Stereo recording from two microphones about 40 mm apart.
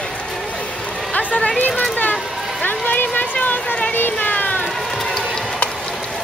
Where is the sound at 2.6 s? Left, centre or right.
Left.